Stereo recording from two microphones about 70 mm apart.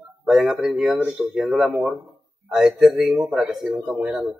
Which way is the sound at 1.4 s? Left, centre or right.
Centre.